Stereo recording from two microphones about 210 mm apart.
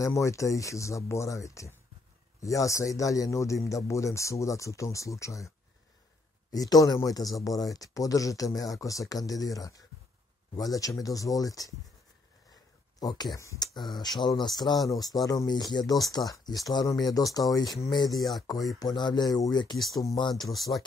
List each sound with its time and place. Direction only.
0.0 s a man's voice: 15° left (ahead or behind)
6.5 s a man's voice: 15° left (ahead or behind)
13.0 s a man's voice: 20° left (ahead or behind)
18.1 s speech: centre (ahead or behind)
18.8 s speech: 20° left (ahead or behind)
19.8 s speech: centre (ahead or behind)
20.1 s speech: 20° left (ahead or behind)